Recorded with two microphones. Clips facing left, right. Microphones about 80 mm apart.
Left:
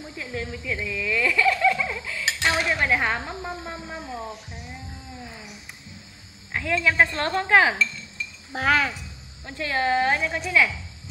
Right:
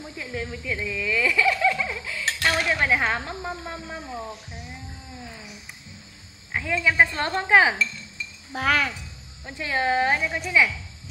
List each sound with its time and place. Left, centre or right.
0.3 s speech: centre
2.0 s a sound: centre
2.2 s dishes: centre
2.6 s music: centre
3.1 s a woman's voice: centre
6.5 s speech: centre
8.5 s speech: left
9.5 s speech: centre